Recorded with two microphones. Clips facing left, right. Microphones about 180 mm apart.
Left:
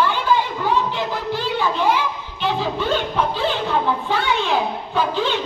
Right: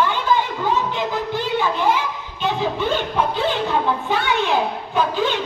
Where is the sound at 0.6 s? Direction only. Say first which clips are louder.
Even; 20° right (ahead or behind).